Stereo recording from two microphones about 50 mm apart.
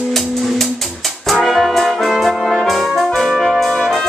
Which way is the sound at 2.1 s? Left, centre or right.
Centre.